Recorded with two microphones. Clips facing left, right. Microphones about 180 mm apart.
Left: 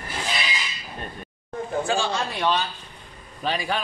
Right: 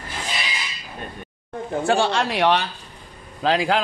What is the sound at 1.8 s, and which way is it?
Speech, 65° right (ahead or behind).